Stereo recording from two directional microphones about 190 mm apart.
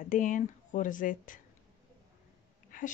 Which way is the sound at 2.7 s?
45° left (ahead or behind).